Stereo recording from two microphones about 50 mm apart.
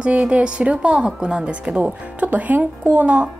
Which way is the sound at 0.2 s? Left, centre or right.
Centre.